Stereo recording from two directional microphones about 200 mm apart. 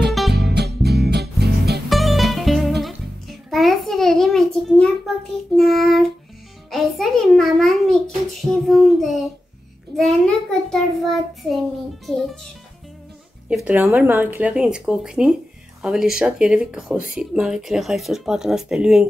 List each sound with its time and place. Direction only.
0.1 s music: centre (ahead or behind)
0.4 s music: 55° right (ahead or behind)
1.9 s music: centre (ahead or behind)
4.6 s a sound: 5° left (ahead or behind)
5.6 s child singing: centre (ahead or behind)
12.1 s music: centre (ahead or behind)
13.7 s speech: 10° right (ahead or behind)